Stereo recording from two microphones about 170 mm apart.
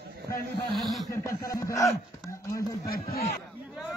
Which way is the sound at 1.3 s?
20° left (ahead or behind).